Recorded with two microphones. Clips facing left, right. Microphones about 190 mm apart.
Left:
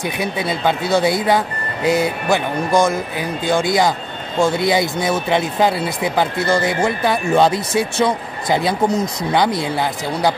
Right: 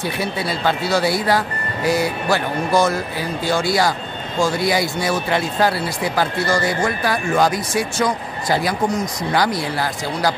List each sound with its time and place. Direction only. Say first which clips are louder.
0.0 s speech: left 1 dB; 20° left (ahead or behind)